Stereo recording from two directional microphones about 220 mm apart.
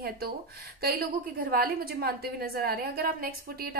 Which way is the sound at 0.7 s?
45° right (ahead or behind).